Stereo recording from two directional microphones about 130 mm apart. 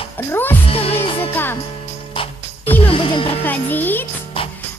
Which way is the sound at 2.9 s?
40° left (ahead or behind).